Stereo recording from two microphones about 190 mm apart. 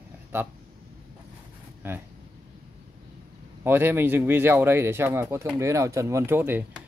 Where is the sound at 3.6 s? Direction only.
10° right (ahead or behind).